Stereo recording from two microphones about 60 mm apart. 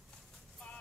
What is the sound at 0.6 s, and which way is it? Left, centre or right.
Music, centre.